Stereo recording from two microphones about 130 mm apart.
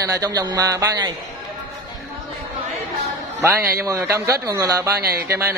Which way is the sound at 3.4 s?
20° right (ahead or behind).